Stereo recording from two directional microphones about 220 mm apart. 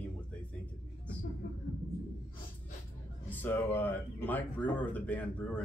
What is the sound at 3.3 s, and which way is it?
Speech, 10° left (ahead or behind).